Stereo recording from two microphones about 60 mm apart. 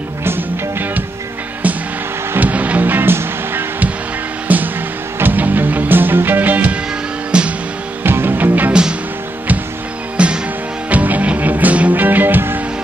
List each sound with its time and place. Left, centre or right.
0.2 s music: right
2.3 s music: right
4.5 s music: right
7.3 s music: centre
8.0 s music: right
10.1 s music: centre; by 12.6 s right